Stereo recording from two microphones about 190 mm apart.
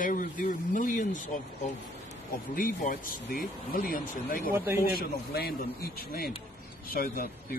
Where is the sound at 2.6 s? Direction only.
45° left (ahead or behind).